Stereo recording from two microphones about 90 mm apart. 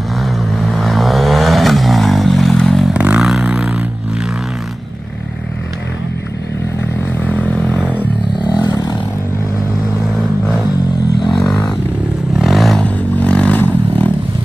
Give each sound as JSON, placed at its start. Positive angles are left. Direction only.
{"t": 0.2, "sound": "vehicle", "side_deg": 0}
{"t": 2.9, "sound": "vehicle", "side_deg": -15}
{"t": 7.2, "sound": "vehicle", "side_deg": 20}
{"t": 8.4, "sound": "a sound", "side_deg": 55}
{"t": 10.0, "sound": "vehicle", "side_deg": 10}
{"t": 12.4, "sound": "vehicle", "side_deg": 0}
{"t": 12.8, "sound": "a sound", "side_deg": 15}